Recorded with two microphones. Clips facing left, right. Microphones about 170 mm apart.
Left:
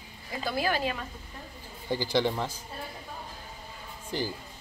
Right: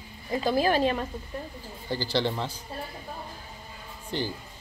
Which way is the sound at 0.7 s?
30° right (ahead or behind).